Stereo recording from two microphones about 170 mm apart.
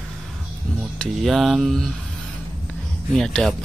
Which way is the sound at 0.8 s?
Centre (ahead or behind).